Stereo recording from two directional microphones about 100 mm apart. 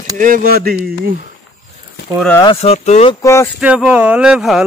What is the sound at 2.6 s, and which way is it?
Speech, 90° left.